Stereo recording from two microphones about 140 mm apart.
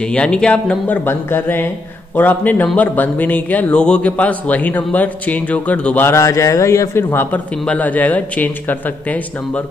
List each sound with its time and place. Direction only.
0.0 s speech: 5° left (ahead or behind)